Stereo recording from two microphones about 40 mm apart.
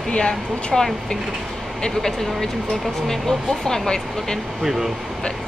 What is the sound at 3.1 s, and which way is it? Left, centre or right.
A woman's voice, centre.